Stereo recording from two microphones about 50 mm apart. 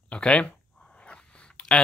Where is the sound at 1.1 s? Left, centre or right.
Left.